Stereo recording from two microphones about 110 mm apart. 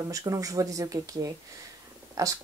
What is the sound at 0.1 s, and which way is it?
A woman's voice, 30° right (ahead or behind).